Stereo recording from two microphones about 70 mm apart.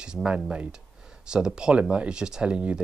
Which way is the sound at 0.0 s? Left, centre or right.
Centre.